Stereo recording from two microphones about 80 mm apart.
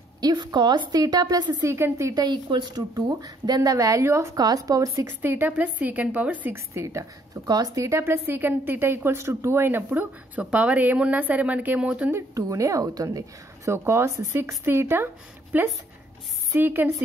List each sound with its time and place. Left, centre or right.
0.2 s a woman's voice: right
1.6 s speech: right
2.1 s a woman's voice: right
4.4 s a woman's voice: right
5.2 s a woman's voice: right
6.5 s speech: right
7.4 s a woman's voice: right
7.9 s a woman's voice: right
12.4 s a woman's voice: right
13.7 s a woman's voice: right